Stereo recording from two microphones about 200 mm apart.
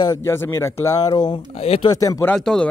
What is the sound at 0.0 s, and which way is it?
Speech, 15° left (ahead or behind).